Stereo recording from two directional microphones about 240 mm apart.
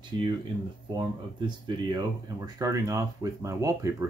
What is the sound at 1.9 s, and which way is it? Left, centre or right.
Speech, centre.